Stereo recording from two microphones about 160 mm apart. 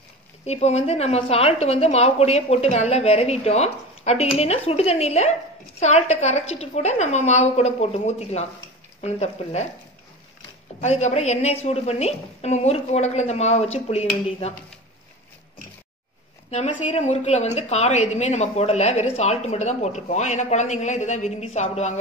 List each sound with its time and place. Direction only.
0.5 s a woman's voice: 45° left (ahead or behind)
10.8 s a woman's voice: 45° left (ahead or behind)
16.4 s a woman's voice: 40° left (ahead or behind)